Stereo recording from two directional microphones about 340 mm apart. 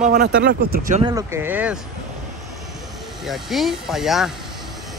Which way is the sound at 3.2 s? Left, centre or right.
Centre.